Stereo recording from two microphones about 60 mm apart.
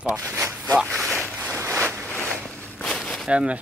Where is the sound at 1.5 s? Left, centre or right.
Right.